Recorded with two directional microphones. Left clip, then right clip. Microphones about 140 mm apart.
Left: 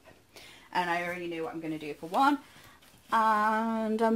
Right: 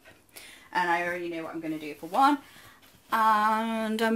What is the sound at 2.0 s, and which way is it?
Speech, 70° left (ahead or behind).